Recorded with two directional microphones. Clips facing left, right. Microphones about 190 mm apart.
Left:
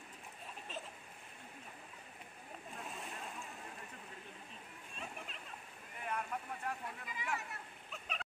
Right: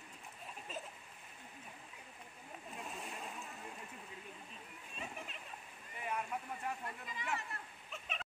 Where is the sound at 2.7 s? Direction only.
Centre (ahead or behind).